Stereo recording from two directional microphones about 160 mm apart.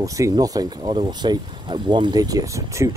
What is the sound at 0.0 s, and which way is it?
Speech, 20° right (ahead or behind).